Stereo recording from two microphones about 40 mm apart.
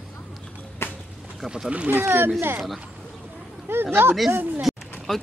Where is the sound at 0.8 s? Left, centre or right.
Left.